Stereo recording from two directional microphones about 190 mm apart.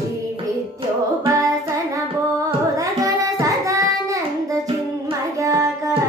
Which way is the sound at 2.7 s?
15° right (ahead or behind).